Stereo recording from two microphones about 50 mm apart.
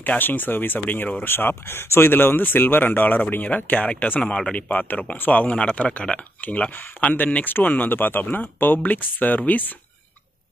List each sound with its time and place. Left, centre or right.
0.0 s speech: left
5.4 s speech: left
7.4 s speech: left